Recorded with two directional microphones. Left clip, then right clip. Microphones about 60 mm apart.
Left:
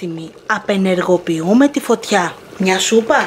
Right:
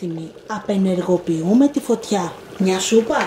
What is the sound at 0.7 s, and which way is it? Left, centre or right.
Speech, right.